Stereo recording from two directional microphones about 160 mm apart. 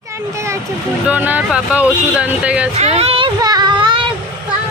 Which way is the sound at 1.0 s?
10° right (ahead or behind).